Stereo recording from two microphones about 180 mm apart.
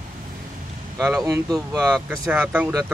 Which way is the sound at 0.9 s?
Centre (ahead or behind).